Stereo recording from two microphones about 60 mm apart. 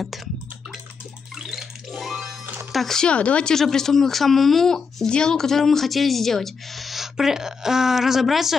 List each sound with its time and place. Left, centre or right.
0.0 s a sound: centre
1.3 s music: centre
2.4 s music: right
2.7 s speech: centre
3.1 s speech: left
3.5 s speech: centre